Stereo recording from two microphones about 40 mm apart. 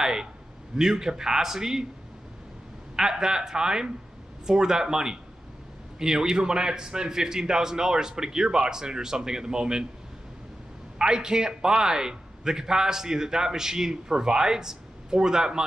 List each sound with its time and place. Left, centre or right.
0.0 s a man's voice: centre
3.0 s a man's voice: centre
11.0 s a man's voice: centre